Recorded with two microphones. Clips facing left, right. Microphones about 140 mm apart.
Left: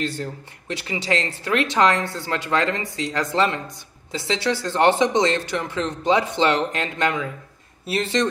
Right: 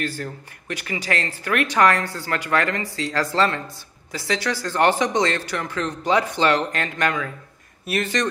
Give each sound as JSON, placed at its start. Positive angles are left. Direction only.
{"t": 0.0, "sound": "speech", "side_deg": 25}